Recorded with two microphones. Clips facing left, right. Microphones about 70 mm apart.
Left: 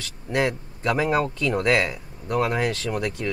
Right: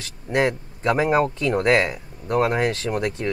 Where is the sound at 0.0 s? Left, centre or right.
Right.